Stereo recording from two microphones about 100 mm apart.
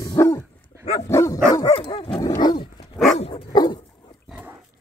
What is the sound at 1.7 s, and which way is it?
Dog, 60° left (ahead or behind).